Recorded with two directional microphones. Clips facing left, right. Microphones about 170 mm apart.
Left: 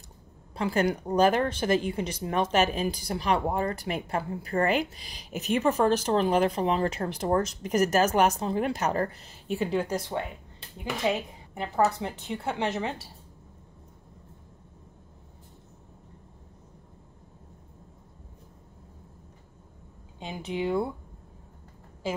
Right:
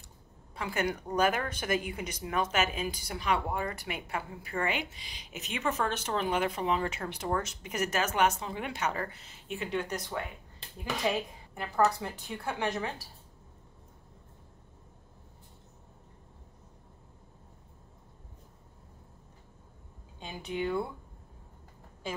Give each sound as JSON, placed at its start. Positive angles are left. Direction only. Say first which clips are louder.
{"t": 0.6, "sound": "speech", "louder": "left 6 dB", "side_deg": 35}
{"t": 20.2, "sound": "speech", "louder": "left 3 dB", "side_deg": 25}